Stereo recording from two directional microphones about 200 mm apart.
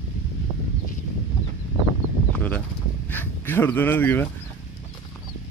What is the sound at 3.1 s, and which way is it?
Fowl, 10° left (ahead or behind).